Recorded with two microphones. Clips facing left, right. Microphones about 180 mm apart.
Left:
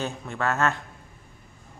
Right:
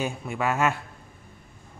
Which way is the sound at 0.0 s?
10° right (ahead or behind).